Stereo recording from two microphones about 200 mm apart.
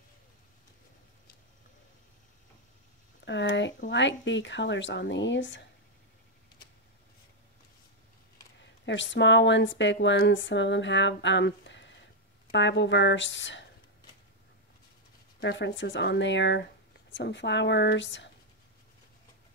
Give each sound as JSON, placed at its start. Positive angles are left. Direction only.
{"t": 3.3, "sound": "speech", "side_deg": 60}
{"t": 8.8, "sound": "speech", "side_deg": 65}
{"t": 15.4, "sound": "speech", "side_deg": 60}